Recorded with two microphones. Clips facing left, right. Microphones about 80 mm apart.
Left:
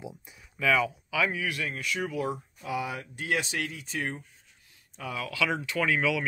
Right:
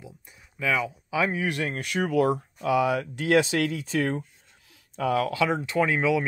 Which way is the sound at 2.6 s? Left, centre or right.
Right.